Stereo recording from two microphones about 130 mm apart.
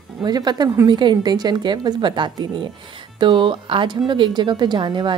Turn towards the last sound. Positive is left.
turn(degrees=-35)  # may be behind; listen again after turning